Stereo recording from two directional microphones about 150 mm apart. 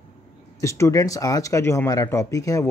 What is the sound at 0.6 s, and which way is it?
Speech, 20° left (ahead or behind).